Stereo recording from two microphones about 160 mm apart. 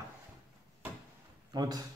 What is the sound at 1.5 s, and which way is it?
Speech, 25° right (ahead or behind).